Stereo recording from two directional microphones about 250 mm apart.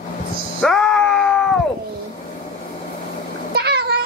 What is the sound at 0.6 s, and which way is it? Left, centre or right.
Groan, centre.